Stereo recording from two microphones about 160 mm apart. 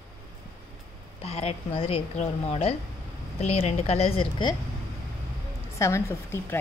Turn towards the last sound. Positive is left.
turn(degrees=15)  # may be behind; listen again after turning